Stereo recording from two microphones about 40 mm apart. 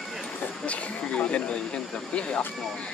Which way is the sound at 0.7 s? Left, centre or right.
Left.